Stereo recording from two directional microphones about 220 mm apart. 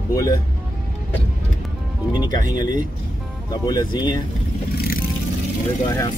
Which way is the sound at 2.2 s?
20° left (ahead or behind).